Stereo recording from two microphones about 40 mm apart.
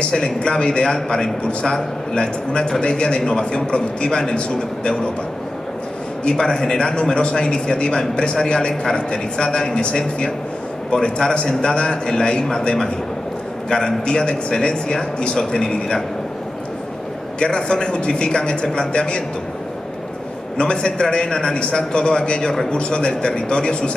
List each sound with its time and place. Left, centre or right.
0.4 s a man's voice: left
6.2 s a man's voice: centre
17.4 s a man's voice: centre
20.5 s a man's voice: left
22.7 s a man's voice: left